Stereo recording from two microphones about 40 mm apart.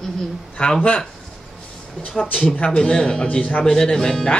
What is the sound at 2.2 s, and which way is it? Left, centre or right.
Speech, left.